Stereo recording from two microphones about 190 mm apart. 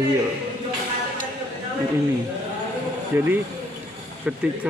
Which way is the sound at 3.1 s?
10° right (ahead or behind).